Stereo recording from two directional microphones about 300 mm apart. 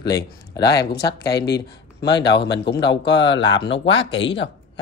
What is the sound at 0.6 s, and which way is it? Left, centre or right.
A man's voice, left.